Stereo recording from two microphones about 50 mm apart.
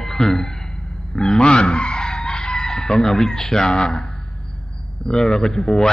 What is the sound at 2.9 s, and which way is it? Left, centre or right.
Speech, centre.